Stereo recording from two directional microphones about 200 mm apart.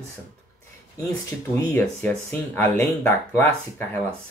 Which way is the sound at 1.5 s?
10° left (ahead or behind).